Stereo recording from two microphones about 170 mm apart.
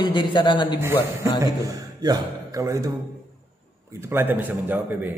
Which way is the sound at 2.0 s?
20° right (ahead or behind).